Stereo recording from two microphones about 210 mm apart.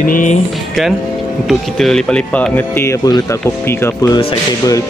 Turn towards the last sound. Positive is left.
turn(degrees=15)  # may be behind; listen again after turning